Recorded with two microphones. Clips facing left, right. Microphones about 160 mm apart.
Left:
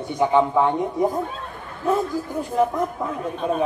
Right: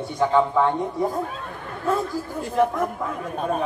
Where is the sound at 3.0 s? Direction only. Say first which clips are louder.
Left 1 dB; 20° left (ahead or behind).